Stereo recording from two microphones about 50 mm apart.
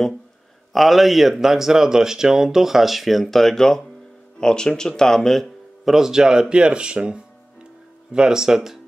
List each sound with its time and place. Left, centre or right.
0.7 s speech: centre
5.9 s speech: centre